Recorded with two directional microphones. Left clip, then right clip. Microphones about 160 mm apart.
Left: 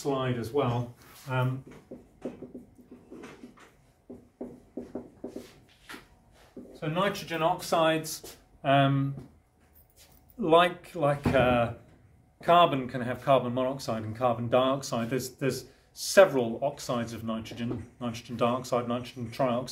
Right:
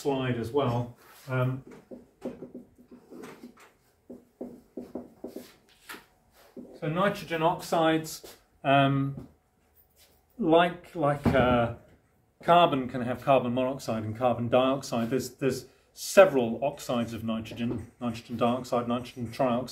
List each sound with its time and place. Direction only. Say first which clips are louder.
0.0 s speech: right 1 dB; 15° left (ahead or behind)
1.3 s speech: even; 45° left (ahead or behind)
6.8 s speech: right 1 dB; 40° left (ahead or behind)
10.4 s speech: left 1 dB; 60° left (ahead or behind); by 17.6 s 20° left (ahead or behind)
17.9 s speech: even; 30° left (ahead or behind)